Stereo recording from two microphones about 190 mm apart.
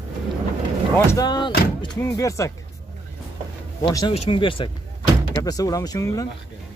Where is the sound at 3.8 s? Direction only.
20° left (ahead or behind).